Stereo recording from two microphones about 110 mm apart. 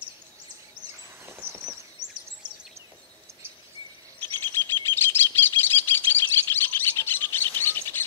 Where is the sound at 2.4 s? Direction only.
40° right (ahead or behind).